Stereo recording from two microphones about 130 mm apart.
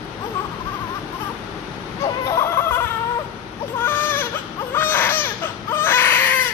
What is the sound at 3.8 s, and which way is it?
Baby cry, 15° left (ahead or behind).